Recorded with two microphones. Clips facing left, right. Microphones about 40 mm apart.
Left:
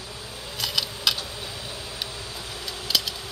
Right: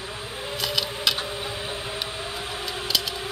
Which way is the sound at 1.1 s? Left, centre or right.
Right.